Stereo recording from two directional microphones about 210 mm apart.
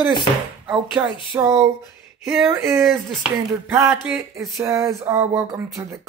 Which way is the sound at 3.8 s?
10° right (ahead or behind).